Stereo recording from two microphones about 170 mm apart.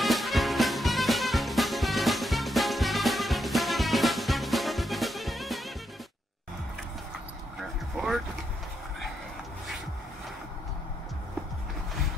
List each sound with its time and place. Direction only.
0.0 s music: centre (ahead or behind)